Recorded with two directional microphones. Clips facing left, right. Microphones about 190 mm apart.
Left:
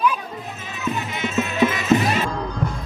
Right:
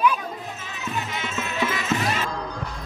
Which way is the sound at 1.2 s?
20° left (ahead or behind).